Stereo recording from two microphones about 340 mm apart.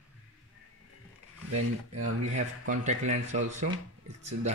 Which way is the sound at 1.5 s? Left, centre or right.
Right.